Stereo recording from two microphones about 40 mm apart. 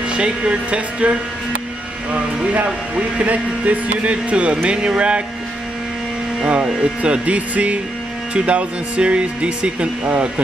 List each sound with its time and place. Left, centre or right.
0.1 s speech: right
2.5 s speech: right
6.4 s speech: right